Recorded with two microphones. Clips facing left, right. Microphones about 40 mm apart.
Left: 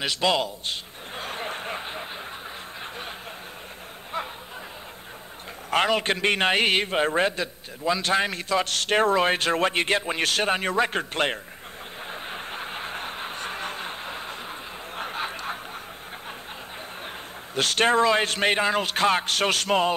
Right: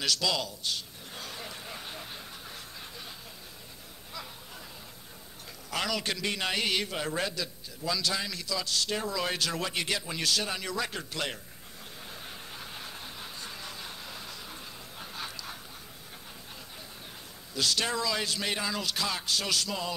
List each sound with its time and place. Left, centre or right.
0.0 s a sound: left
5.7 s a man's voice: left
12.1 s vehicle: left
17.6 s a man's voice: left